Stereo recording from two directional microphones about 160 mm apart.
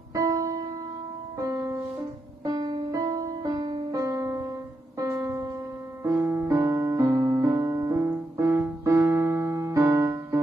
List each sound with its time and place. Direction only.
1.4 s music: 20° right (ahead or behind)
6.0 s keyboard: 15° right (ahead or behind)